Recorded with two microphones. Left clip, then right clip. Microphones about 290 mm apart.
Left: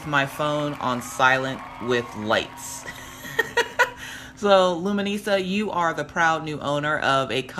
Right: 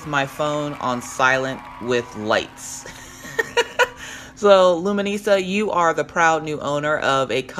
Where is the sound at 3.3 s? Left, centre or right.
Centre.